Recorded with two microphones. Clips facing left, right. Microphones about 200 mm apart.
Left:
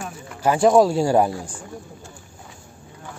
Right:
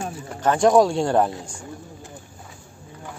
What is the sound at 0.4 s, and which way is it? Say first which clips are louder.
Speech: left 1 dB; 5° left (ahead or behind).